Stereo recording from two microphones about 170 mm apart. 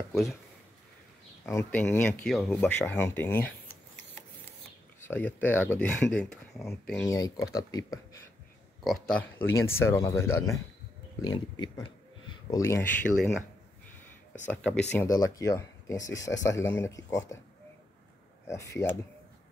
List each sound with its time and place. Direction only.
1.5 s speech: 15° left (ahead or behind)
5.0 s speech: 10° left (ahead or behind)
7.1 s speech: 20° left (ahead or behind)
8.8 s speech: 5° left (ahead or behind)
9.5 s speech: 15° left (ahead or behind)
14.5 s speech: 10° left (ahead or behind)
15.0 s speech: 20° left (ahead or behind)
18.5 s speech: 20° left (ahead or behind)